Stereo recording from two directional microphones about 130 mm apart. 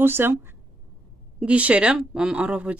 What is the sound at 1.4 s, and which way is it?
Speech, 10° right (ahead or behind).